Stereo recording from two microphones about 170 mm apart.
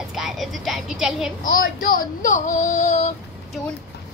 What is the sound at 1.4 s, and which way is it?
Speech, 55° left (ahead or behind).